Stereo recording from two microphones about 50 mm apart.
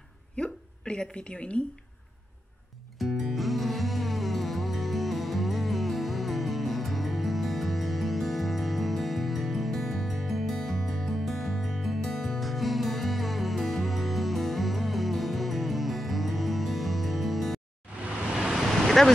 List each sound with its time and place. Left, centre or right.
0.4 s a sound: centre
3.0 s music: centre
18.4 s vehicle: centre